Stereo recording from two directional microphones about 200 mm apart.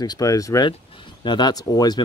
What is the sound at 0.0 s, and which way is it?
Speech, 20° left (ahead or behind).